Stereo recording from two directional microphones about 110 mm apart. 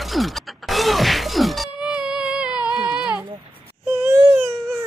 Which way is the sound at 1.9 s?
5° right (ahead or behind).